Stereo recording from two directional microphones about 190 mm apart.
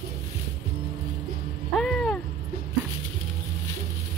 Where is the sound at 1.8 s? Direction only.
Centre (ahead or behind).